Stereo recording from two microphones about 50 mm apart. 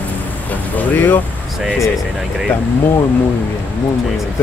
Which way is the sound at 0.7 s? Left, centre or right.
Left.